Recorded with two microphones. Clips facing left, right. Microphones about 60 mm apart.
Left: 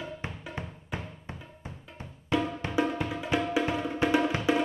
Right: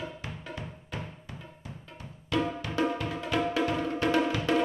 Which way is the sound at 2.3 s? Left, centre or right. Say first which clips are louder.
Left 1 dB; centre.